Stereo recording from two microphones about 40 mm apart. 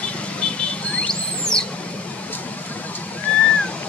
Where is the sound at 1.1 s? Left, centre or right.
Centre.